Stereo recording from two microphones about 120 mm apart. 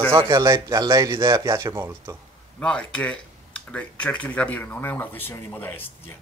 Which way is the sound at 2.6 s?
10° left (ahead or behind).